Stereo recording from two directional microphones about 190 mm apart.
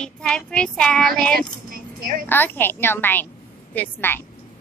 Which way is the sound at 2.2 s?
10° left (ahead or behind).